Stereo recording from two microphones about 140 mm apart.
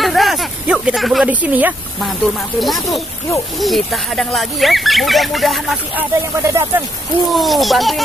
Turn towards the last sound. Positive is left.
turn(degrees=0)  # may be behind; listen again after turning